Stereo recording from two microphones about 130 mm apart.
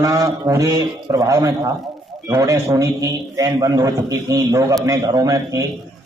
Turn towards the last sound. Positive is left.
turn(degrees=-25)  # may be behind; listen again after turning